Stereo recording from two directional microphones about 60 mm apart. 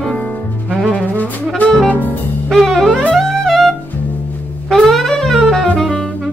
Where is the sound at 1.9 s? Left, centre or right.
Left.